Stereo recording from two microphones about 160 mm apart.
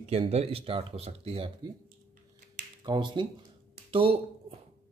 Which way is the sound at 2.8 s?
30° right (ahead or behind).